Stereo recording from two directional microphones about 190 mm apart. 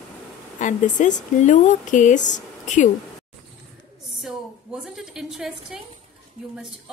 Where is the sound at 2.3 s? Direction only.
40° left (ahead or behind).